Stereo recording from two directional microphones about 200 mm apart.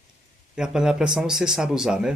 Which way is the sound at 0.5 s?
5° right (ahead or behind).